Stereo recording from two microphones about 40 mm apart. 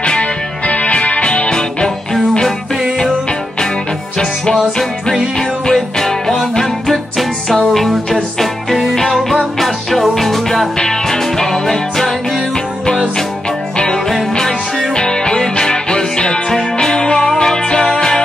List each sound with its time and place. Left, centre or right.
0.0 s music: left
5.7 s music: centre
13.7 s music: centre